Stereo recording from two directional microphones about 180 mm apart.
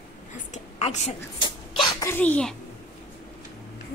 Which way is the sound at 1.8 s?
15° left (ahead or behind).